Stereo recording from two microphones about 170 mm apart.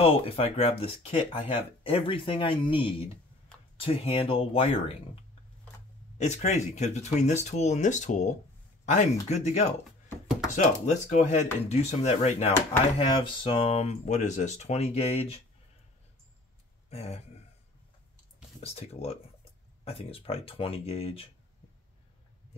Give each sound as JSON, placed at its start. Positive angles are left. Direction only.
{"t": 0.0, "sound": "speech", "side_deg": 35}
{"t": 3.5, "sound": "a sound", "side_deg": 5}
{"t": 3.8, "sound": "speech", "side_deg": 35}
{"t": 6.1, "sound": "speech", "side_deg": 40}
{"t": 16.9, "sound": "speech", "side_deg": 40}
{"t": 18.6, "sound": "speech", "side_deg": 35}